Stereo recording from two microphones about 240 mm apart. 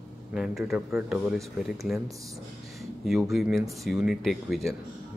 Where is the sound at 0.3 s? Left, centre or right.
Centre.